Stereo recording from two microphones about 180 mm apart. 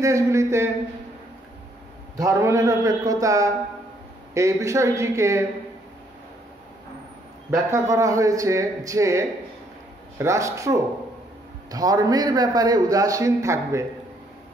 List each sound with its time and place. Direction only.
0.0 s speech: 15° right (ahead or behind)
2.1 s a man's voice: 20° right (ahead or behind)
7.7 s a man's voice: 20° right (ahead or behind)